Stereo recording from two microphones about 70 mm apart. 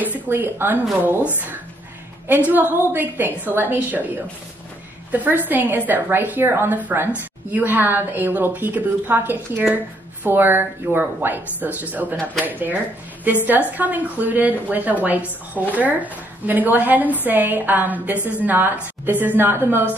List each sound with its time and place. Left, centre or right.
0.0 s speech: right
2.2 s a woman's voice: right
5.1 s a woman's voice: right